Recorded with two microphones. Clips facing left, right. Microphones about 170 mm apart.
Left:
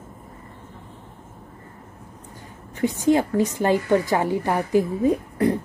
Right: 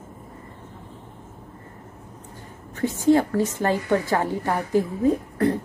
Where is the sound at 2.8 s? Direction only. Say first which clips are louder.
Right 1 dB; 15° left (ahead or behind).